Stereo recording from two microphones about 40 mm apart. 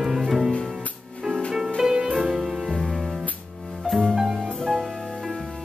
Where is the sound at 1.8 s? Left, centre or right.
Centre.